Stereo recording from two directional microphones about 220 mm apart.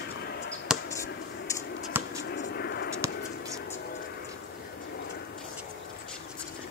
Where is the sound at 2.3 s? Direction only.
50° left (ahead or behind).